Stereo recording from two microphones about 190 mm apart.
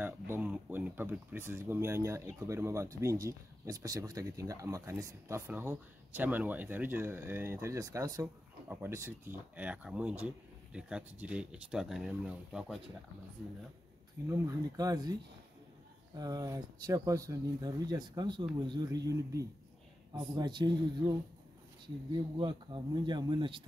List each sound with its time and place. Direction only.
0.0 s speech: 10° right (ahead or behind)
14.5 s speech: 20° right (ahead or behind)
16.2 s speech: 20° right (ahead or behind)